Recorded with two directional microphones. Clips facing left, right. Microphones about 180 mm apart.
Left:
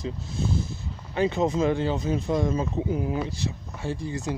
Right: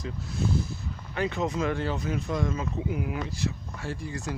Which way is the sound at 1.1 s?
25° left (ahead or behind).